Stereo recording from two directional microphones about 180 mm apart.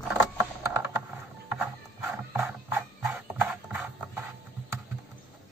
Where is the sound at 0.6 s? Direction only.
10° right (ahead or behind).